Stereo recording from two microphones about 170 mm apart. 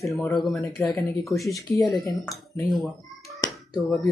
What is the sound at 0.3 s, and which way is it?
Speech, centre (ahead or behind).